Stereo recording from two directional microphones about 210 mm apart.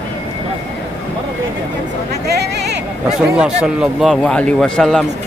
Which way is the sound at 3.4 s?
5° right (ahead or behind).